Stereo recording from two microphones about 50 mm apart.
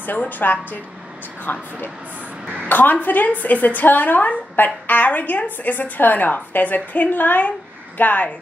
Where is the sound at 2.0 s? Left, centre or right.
Right.